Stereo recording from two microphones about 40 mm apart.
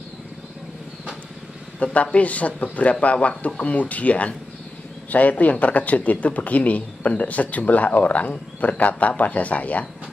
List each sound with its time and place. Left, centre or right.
1.8 s speech: left